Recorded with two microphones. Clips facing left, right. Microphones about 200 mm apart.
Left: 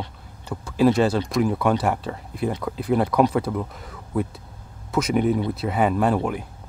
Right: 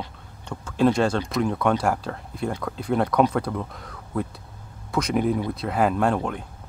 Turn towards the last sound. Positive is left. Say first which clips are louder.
# left 2 dB
turn(degrees=5)  # may be behind; listen again after turning